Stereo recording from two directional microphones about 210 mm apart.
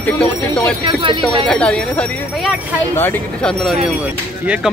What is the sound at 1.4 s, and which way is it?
Speech, 5° left (ahead or behind).